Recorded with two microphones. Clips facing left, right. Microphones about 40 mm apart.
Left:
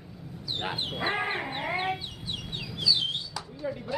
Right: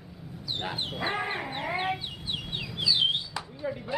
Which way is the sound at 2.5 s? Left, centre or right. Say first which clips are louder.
Even; right.